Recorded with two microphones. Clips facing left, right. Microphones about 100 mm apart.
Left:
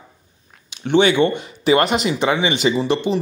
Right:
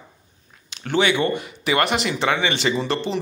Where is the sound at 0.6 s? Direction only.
25° left (ahead or behind).